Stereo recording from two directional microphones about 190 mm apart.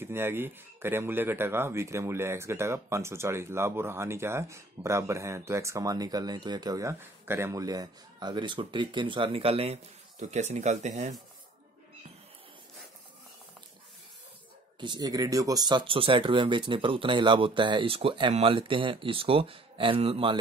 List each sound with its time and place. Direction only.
0.0 s speech: 10° right (ahead or behind); by 11.1 s 40° right (ahead or behind)
14.8 s speech: 20° right (ahead or behind)